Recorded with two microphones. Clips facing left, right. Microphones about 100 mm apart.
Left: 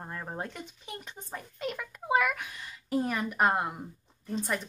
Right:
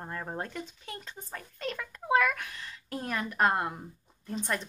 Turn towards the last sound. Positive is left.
turn(degrees=5)  # may be behind; listen again after turning